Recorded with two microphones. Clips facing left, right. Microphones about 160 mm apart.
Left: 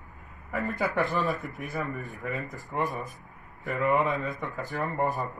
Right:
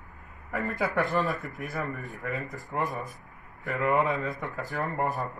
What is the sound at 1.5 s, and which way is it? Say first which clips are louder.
Speech: even; 20° left (ahead or behind).